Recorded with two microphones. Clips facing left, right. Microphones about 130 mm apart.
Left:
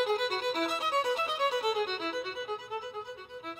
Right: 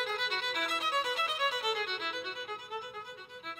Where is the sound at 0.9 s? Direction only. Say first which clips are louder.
Left 3 dB; 25° left (ahead or behind).